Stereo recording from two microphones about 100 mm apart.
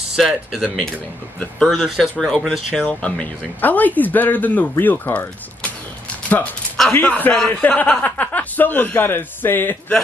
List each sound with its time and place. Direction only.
0.1 s speech: 5° right (ahead or behind)
0.7 s speech: 10° left (ahead or behind)
6.9 s speech: 15° left (ahead or behind)